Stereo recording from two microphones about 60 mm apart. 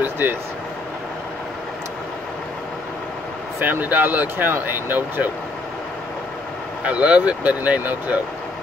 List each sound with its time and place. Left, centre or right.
0.0 s vehicle: right
3.5 s speech: right
6.8 s speech: right